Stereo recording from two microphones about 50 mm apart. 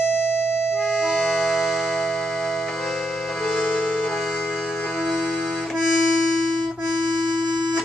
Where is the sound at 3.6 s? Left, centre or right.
Left.